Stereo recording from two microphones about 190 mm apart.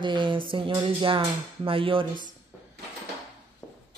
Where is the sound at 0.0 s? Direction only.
25° right (ahead or behind).